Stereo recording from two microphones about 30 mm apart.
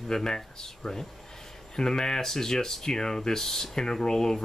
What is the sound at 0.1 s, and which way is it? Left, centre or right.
Speech, left.